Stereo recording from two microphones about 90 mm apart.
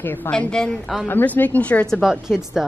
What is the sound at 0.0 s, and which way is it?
Speech, 20° left (ahead or behind).